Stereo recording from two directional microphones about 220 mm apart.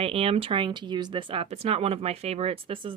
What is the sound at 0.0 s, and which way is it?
A woman's voice, 25° right (ahead or behind).